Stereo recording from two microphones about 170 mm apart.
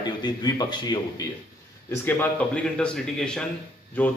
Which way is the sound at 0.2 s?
25° left (ahead or behind).